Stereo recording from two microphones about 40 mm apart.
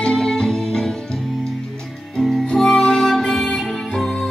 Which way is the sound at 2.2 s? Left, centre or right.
Centre.